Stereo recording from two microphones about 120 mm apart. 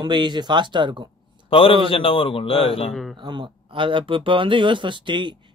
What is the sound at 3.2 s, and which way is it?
Speech, 40° right (ahead or behind).